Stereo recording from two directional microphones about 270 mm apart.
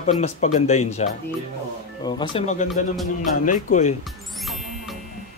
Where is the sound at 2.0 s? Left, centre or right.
Centre.